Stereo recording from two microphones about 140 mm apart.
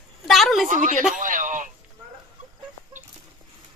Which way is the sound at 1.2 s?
70° right (ahead or behind).